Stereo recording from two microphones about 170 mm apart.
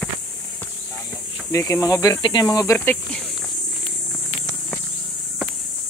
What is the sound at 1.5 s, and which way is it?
Speech, 20° left (ahead or behind).